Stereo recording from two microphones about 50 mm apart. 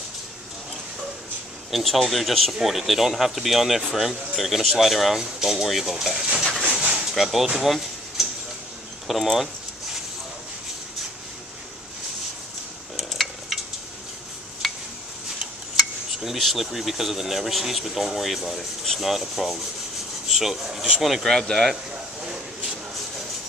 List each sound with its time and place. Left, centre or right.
1.7 s speech: centre
6.8 s a sound: right
7.2 s speech: centre
7.6 s a sound: centre
9.0 s speech: centre
12.9 s stir: centre
14.6 s a sound: centre
15.7 s speech: centre
21.0 s speech: centre